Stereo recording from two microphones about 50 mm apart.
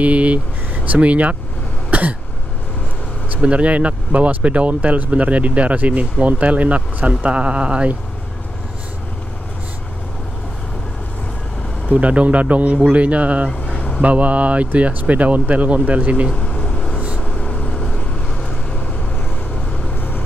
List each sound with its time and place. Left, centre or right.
0.0 s speech: right
1.9 s cough: right
3.3 s speech: right
11.9 s speech: right
13.7 s vehicle: centre
14.0 s speech: right
16.3 s vehicle: left
20.0 s vehicle: left